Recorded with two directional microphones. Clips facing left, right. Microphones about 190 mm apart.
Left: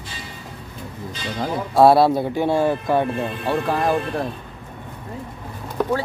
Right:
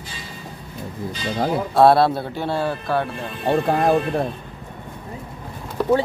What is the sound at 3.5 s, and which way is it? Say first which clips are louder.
Speech: right 4 dB; 25° right (ahead or behind).